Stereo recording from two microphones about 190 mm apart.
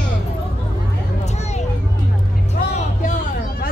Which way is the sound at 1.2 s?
35° left (ahead or behind).